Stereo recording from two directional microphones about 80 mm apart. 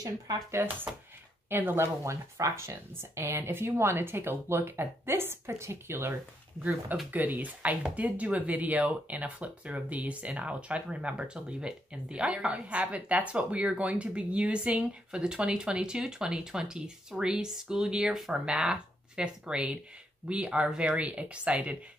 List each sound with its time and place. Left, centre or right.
1.5 s speech: right
7.1 s speech: right